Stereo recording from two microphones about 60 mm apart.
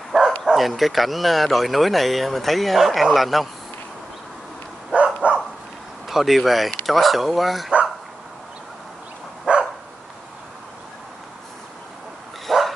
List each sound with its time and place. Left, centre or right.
0.1 s bow-wow: centre
0.5 s speech: centre
4.9 s dog: centre
6.0 s speech: centre
9.5 s dog: centre
12.4 s dog: centre